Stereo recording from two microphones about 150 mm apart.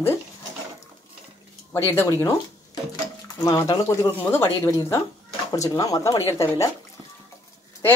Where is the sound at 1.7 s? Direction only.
15° left (ahead or behind).